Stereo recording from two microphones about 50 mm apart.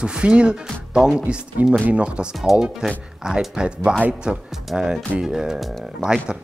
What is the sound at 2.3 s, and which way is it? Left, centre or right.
Speech, centre.